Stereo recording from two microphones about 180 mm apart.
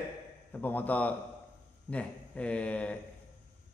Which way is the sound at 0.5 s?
10° left (ahead or behind).